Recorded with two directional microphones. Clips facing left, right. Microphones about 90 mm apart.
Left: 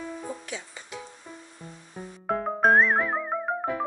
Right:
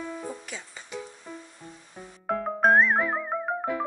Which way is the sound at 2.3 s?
Centre (ahead or behind).